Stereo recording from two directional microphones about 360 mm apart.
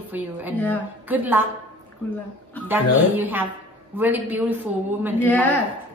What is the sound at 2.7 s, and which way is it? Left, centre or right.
A woman's voice, centre.